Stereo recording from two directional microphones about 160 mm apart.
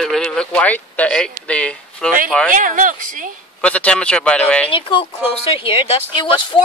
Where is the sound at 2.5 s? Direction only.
55° right (ahead or behind).